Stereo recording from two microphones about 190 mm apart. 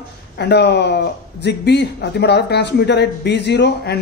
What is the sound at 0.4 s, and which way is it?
Speech, 60° left (ahead or behind).